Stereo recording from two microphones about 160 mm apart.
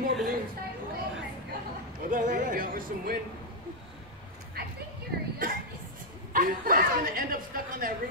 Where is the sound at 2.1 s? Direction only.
55° right (ahead or behind).